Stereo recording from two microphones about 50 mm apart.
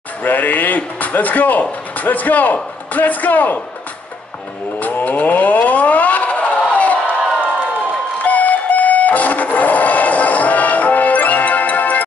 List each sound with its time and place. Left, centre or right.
0.2 s speech: left
4.7 s a sound: left
8.2 s music: left